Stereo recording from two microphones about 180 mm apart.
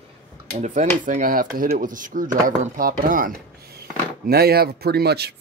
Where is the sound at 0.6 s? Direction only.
40° right (ahead or behind).